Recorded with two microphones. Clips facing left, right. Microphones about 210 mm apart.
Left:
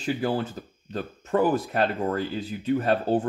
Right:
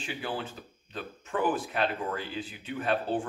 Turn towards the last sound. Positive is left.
turn(degrees=40)  # may be behind; listen again after turning